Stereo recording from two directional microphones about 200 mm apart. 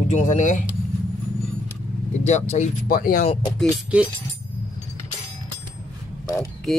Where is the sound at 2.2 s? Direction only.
35° left (ahead or behind).